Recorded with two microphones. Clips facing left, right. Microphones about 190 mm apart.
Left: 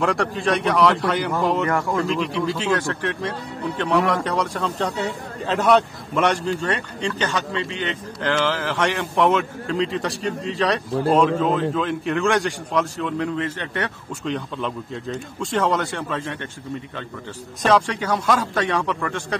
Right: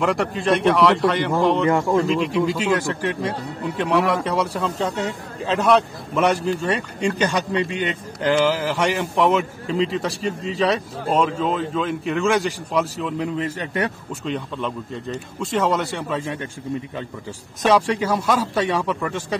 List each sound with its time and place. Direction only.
0.0 s a man's voice: centre (ahead or behind)
1.7 s speech: 25° right (ahead or behind)
2.0 s a man's voice: centre (ahead or behind)
14.3 s a man's voice: centre (ahead or behind)
17.6 s a man's voice: 5° right (ahead or behind)